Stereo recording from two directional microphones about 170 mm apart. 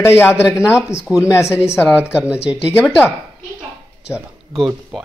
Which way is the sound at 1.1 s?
15° left (ahead or behind).